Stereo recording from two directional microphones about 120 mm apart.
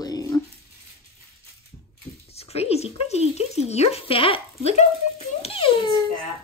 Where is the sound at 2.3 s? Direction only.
60° left (ahead or behind).